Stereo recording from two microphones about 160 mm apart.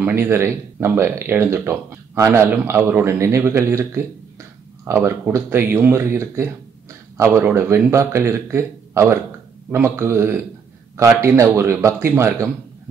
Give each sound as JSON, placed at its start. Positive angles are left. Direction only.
{"t": 0.0, "sound": "speech", "side_deg": -15}